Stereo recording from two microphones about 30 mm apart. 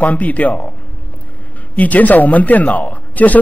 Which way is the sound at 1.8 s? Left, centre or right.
Left.